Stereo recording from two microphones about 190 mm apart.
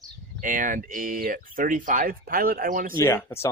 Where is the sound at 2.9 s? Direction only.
15° left (ahead or behind).